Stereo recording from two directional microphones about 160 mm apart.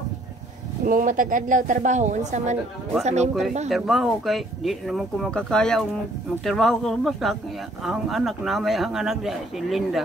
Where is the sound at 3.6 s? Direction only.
Centre (ahead or behind).